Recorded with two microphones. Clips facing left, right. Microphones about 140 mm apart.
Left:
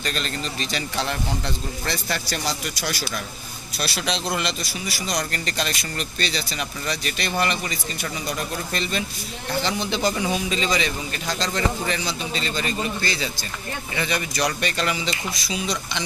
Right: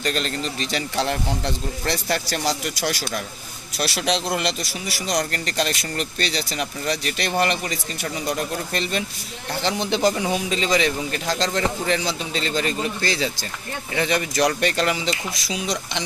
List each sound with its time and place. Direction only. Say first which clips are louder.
0.0 s speech: right 3 dB; 60° right (ahead or behind)
3.8 s speech: right 3 dB; 70° right (ahead or behind)
9.6 s speech: right 3 dB; 70° right (ahead or behind)
11.9 s speech: right 3 dB; 85° right
14.3 s speech: right 4 dB; 50° right (ahead or behind)
14.8 s speech: right 3 dB; 65° right (ahead or behind)